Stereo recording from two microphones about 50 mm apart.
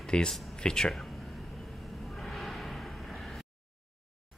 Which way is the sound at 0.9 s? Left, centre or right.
Centre.